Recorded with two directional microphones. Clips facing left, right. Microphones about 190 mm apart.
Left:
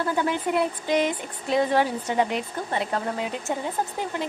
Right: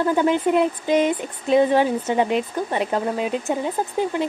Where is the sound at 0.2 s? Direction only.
20° right (ahead or behind).